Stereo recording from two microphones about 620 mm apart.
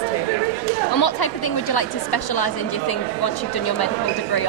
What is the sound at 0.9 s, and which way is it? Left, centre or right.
A woman's voice, left.